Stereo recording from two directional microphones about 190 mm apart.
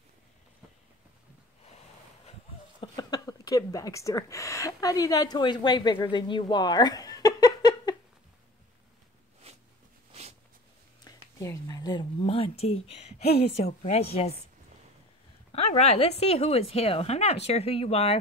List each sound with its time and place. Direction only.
2.8 s speech: 20° left (ahead or behind)
11.1 s a sound: 15° left (ahead or behind); by 12.8 s 30° left (ahead or behind)
13.4 s speech: 35° left (ahead or behind)
15.5 s speech: 35° left (ahead or behind)